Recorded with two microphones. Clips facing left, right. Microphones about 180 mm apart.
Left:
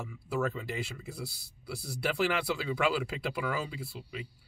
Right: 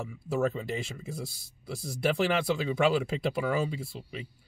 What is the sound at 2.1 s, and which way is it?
Speech, 25° right (ahead or behind).